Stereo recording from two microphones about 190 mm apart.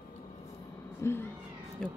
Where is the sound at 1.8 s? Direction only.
5° left (ahead or behind).